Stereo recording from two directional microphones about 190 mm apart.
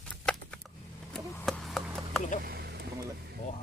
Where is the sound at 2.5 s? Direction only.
55° right (ahead or behind).